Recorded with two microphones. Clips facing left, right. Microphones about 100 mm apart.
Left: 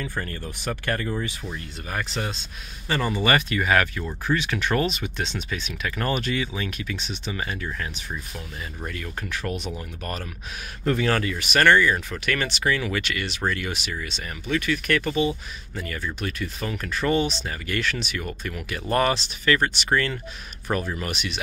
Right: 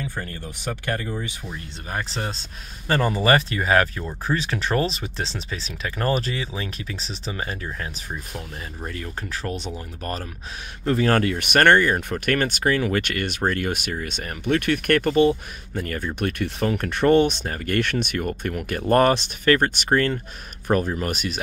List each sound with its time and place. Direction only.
0.0 s speech: 15° right (ahead or behind)
1.9 s speech: 30° right (ahead or behind)
2.9 s speech: 45° right (ahead or behind)
11.1 s speech: 60° right (ahead or behind)